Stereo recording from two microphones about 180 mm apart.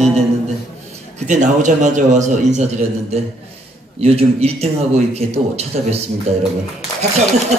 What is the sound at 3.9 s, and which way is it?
A man's voice, 35° right (ahead or behind).